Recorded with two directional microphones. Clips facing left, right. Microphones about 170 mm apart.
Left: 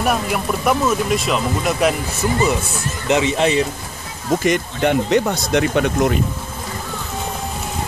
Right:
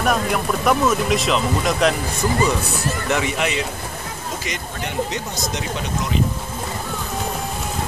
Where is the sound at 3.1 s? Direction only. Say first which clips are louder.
Left 7 dB; 25° left (ahead or behind).